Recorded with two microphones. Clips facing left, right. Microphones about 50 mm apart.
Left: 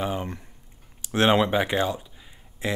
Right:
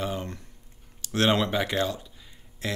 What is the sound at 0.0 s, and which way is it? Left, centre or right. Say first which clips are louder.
Speech: left 3 dB; centre.